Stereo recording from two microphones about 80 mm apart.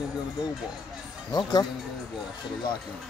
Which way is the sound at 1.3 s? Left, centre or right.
Left.